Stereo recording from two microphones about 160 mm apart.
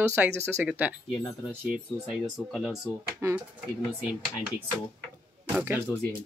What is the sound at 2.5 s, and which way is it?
Speech, centre (ahead or behind).